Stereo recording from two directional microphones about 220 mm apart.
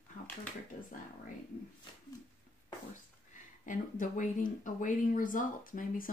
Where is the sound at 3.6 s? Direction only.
35° left (ahead or behind).